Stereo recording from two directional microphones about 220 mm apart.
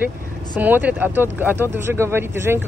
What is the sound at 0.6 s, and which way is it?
Speech, 10° right (ahead or behind).